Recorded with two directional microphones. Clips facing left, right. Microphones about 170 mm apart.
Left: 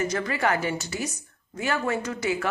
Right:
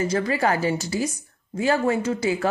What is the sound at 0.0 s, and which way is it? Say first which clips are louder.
A woman's voice: right 4 dB; 30° right (ahead or behind).